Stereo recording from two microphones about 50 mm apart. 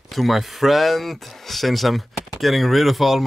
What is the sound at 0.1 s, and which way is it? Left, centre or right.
Speech, centre.